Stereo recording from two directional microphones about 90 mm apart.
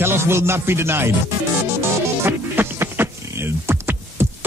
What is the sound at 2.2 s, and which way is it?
Speech, 25° right (ahead or behind).